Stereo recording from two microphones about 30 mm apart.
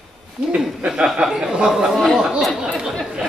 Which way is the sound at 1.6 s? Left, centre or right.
Centre.